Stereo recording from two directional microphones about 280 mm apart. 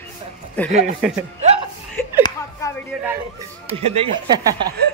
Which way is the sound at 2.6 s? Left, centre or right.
Centre.